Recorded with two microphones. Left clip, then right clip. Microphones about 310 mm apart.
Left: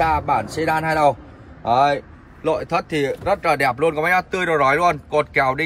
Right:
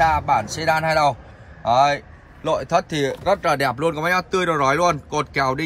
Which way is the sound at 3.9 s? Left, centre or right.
Centre.